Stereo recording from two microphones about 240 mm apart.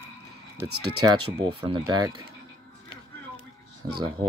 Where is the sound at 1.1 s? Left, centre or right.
Right.